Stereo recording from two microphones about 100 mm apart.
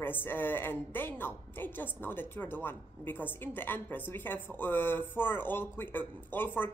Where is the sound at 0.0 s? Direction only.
20° left (ahead or behind).